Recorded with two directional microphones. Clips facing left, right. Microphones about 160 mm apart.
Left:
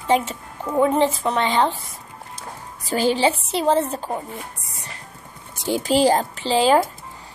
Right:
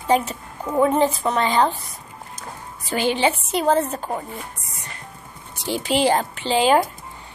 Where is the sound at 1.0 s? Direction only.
25° left (ahead or behind).